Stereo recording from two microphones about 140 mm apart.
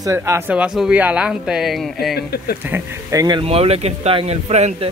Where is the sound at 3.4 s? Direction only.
45° right (ahead or behind).